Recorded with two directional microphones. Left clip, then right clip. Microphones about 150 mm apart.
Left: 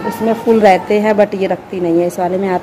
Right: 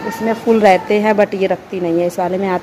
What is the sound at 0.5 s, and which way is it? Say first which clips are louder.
A woman's voice: left 1 dB; 25° right (ahead or behind).